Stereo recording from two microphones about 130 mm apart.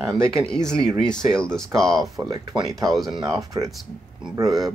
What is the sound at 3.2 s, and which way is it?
Speech, 25° right (ahead or behind).